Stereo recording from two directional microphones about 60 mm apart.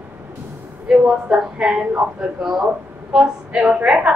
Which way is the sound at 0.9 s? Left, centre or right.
Centre.